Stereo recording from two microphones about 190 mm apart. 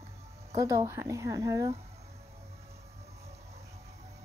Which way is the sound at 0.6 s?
15° right (ahead or behind).